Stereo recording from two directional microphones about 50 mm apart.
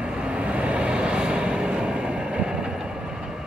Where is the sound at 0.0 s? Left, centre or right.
Right.